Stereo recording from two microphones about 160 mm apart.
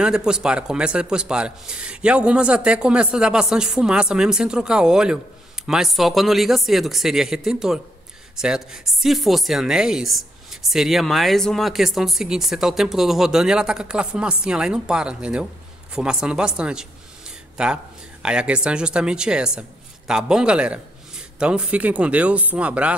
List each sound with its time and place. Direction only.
0.0 s a man's voice: 5° right (ahead or behind)